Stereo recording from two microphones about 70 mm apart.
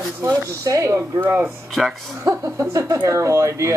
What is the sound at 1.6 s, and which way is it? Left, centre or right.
Speech, centre.